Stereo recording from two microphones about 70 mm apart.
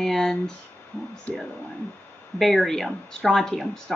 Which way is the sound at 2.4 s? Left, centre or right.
Centre.